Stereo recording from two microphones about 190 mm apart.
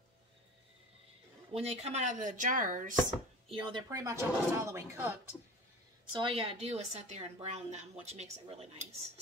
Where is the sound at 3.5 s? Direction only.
25° right (ahead or behind).